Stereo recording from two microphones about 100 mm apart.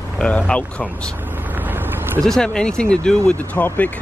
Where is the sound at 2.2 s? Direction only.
5° left (ahead or behind).